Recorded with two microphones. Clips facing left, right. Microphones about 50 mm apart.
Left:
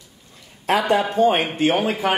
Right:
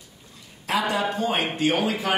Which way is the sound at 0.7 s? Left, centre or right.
Left.